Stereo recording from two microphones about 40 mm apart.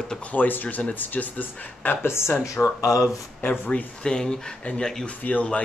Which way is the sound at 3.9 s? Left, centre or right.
Centre.